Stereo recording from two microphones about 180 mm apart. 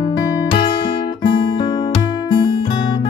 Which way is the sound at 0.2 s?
25° left (ahead or behind).